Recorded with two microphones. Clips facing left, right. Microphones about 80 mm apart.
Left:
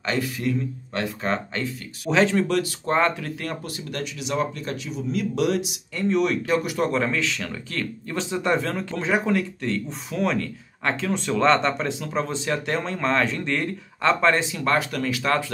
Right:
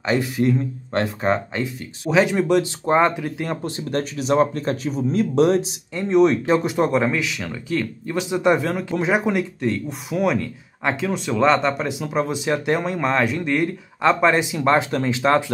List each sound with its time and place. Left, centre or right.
0.0 s speech: centre
0.4 s speech: right
1.3 s speech: centre